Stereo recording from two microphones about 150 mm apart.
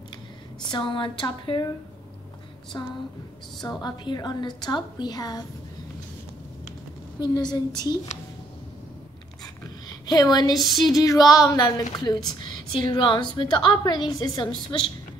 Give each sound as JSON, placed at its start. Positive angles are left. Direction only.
{"t": 0.6, "sound": "speech", "side_deg": 30}
{"t": 2.7, "sound": "a woman's voice", "side_deg": 20}
{"t": 7.2, "sound": "a woman's voice", "side_deg": 30}
{"t": 9.8, "sound": "a woman's voice", "side_deg": 25}
{"t": 10.6, "sound": "speech", "side_deg": 0}
{"t": 11.0, "sound": "a woman's voice", "side_deg": 25}